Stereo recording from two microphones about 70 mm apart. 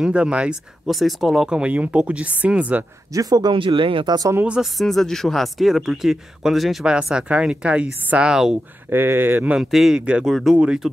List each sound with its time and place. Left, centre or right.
0.0 s speech: centre
0.8 s speech: centre
3.1 s speech: right
4.0 s speech: right
4.6 s speech: centre
6.9 s speech: centre
8.9 s speech: right
9.6 s speech: centre
10.0 s speech: centre
10.3 s speech: centre